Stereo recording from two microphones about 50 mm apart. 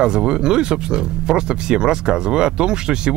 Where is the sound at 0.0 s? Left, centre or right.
Centre.